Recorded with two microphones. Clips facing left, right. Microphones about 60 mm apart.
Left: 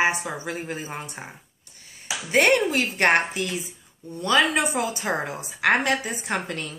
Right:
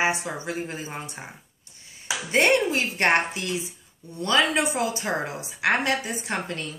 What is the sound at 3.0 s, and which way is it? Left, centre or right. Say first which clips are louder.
A woman's voice: left 2 dB; left.